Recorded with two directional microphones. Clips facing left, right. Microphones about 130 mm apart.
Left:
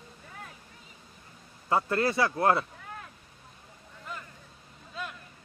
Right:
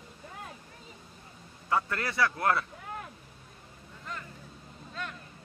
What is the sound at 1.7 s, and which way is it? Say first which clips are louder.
Speech: left 4 dB; 30° left (ahead or behind).